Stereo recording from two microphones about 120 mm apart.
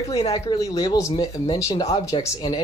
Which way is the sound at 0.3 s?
30° left (ahead or behind).